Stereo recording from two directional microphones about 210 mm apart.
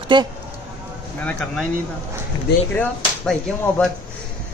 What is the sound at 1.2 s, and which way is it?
Speech, 5° left (ahead or behind).